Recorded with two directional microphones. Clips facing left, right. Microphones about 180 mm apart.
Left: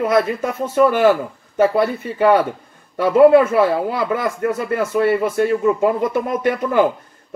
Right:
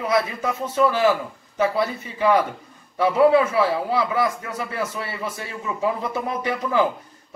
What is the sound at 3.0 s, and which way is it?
Speech, 55° left (ahead or behind).